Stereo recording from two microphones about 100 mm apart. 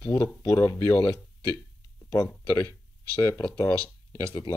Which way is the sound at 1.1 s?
40° right (ahead or behind).